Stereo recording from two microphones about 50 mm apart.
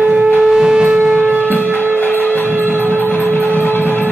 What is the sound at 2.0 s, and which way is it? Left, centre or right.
Music, left.